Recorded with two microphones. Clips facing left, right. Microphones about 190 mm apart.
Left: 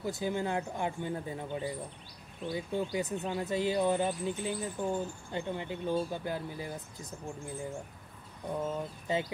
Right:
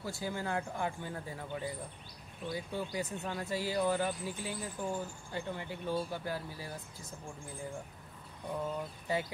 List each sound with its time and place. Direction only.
0.0 s speech: 20° left (ahead or behind)
8.5 s speech: 20° left (ahead or behind)